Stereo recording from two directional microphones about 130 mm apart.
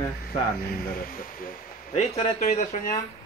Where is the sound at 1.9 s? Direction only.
65° left (ahead or behind).